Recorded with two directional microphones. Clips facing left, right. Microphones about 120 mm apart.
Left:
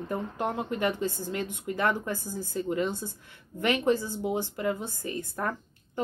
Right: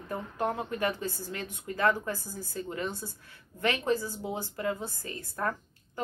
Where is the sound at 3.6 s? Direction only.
25° left (ahead or behind).